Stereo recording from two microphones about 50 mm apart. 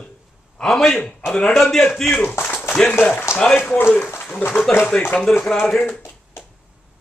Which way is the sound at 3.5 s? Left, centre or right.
Left.